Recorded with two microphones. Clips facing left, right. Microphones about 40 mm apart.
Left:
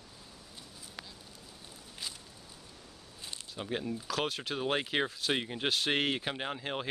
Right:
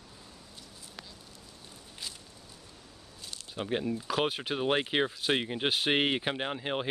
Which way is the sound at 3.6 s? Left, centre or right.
Centre.